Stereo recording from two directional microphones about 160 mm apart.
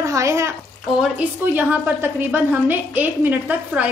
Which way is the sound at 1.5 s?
10° right (ahead or behind).